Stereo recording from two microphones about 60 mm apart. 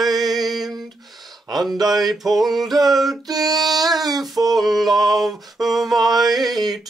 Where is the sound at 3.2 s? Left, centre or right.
Right.